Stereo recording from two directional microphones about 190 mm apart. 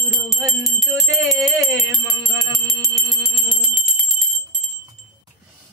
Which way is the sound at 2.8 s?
Centre (ahead or behind).